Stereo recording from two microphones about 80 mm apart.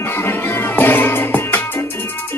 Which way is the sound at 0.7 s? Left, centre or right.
Left.